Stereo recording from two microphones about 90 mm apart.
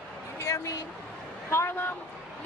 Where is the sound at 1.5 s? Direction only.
30° left (ahead or behind).